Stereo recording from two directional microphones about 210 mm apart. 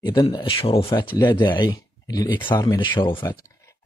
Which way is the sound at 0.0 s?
20° left (ahead or behind).